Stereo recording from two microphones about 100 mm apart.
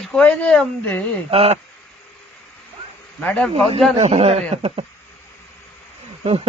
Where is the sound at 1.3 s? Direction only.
75° right (ahead or behind).